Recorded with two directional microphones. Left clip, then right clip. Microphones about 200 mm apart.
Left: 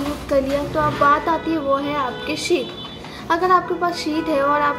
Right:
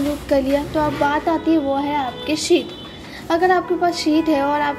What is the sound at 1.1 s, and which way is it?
A child's voice, 30° right (ahead or behind).